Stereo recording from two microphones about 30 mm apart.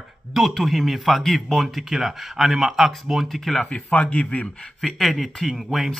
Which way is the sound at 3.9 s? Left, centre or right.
Left.